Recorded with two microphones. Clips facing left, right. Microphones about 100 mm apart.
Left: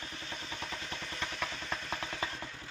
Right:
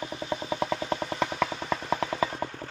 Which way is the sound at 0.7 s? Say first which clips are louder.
Right 13 dB; 80° right.